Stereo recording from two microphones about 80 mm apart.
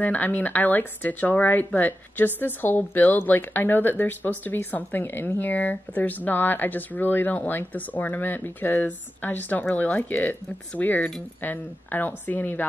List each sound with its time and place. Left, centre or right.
0.0 s speech: left